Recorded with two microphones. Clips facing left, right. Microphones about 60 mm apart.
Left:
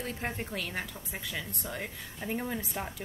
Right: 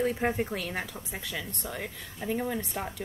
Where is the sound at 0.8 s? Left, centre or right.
Centre.